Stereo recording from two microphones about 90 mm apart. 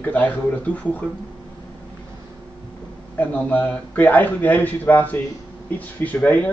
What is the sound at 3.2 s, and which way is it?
Speech, 15° left (ahead or behind).